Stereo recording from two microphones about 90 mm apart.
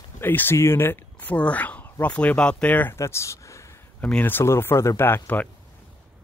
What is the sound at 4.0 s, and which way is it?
Speech, 20° left (ahead or behind).